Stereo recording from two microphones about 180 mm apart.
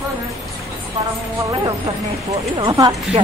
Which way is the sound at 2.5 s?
25° right (ahead or behind).